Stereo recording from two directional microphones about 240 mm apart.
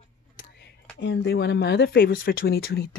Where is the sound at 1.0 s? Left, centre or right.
Left.